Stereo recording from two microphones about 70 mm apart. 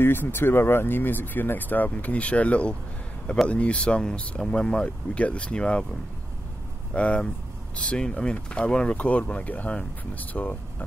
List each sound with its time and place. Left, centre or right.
0.0 s speech: left; by 5.9 s centre
6.9 s speech: centre